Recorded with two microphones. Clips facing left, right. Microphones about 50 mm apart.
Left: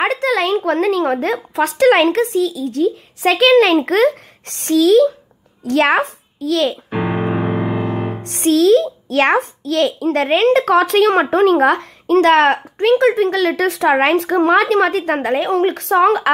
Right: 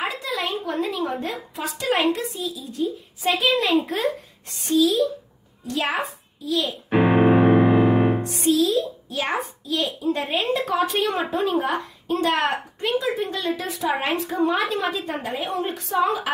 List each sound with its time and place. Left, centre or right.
0.0 s a child's voice: left
6.9 s piano: centre
8.2 s speech: left